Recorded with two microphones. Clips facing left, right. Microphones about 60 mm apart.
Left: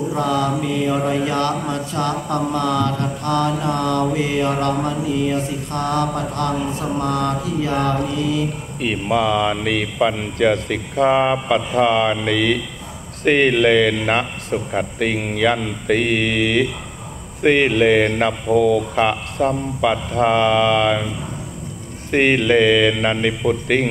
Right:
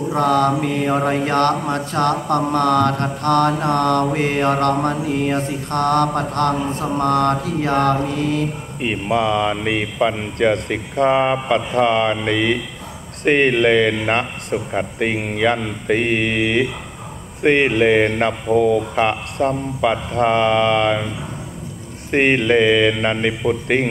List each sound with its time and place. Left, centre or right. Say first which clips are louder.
0.1 s mantra: right 5 dB; right
8.8 s a man's voice: even; centre
15.0 s a man's voice: even; centre
18.5 s a man's voice: even; right; by 21.1 s centre
22.1 s a man's voice: even; centre